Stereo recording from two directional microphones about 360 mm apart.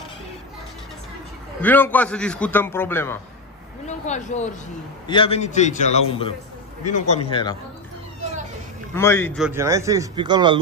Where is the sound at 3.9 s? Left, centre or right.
Centre.